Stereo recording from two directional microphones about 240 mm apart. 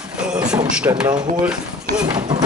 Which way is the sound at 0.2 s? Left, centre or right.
Centre.